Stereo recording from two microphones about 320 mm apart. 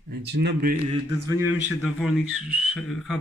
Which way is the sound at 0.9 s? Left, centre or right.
Centre.